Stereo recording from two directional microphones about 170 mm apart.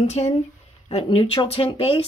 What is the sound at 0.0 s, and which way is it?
Speech, 40° left (ahead or behind).